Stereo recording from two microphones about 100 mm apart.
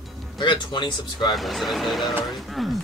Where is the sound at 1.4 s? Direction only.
Centre (ahead or behind).